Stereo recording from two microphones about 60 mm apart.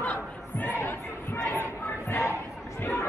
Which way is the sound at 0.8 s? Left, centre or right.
Left.